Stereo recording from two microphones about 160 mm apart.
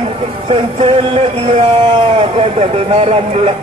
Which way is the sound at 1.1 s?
40° right (ahead or behind).